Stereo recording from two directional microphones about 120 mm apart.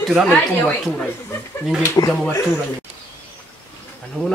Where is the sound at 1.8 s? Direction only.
25° left (ahead or behind).